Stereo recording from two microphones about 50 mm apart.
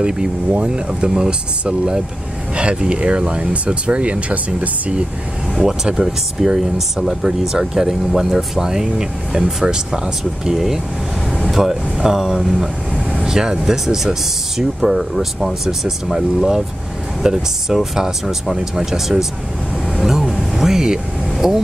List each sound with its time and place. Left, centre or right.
0.0 s speech: centre
5.6 s speech: centre
20.0 s vehicle: centre